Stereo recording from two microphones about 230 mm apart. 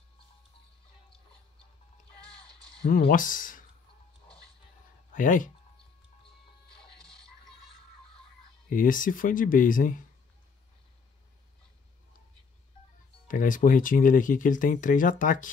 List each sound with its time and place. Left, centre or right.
2.8 s speech: left
5.1 s speech: left
8.6 s speech: left
13.3 s speech: left